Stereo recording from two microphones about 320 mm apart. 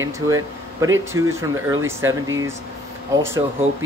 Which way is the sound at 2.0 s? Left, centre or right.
Right.